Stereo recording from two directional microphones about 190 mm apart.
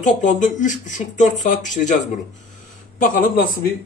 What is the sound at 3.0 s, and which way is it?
Speech, 45° left (ahead or behind).